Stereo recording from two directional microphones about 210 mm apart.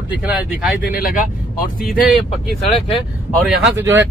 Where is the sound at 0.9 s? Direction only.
45° left (ahead or behind).